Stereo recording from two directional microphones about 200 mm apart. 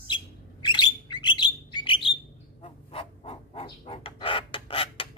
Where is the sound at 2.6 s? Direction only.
30° left (ahead or behind).